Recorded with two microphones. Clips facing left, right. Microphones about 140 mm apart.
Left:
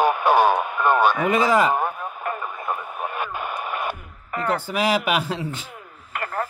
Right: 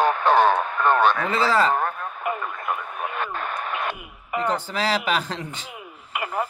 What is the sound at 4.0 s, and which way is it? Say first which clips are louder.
Music: right 2 dB; 10° right (ahead or behind).